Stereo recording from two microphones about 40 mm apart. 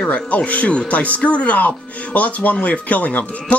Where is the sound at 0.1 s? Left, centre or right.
Left.